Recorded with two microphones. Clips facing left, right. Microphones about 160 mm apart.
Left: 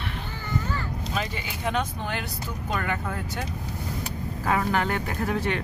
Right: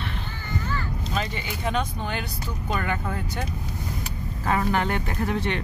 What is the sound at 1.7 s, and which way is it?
Speech, centre (ahead or behind).